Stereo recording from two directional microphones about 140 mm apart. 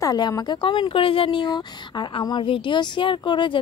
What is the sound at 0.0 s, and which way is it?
A woman's voice, 25° left (ahead or behind).